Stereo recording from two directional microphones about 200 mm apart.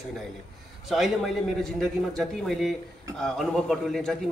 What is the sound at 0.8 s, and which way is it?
A man's voice, centre (ahead or behind).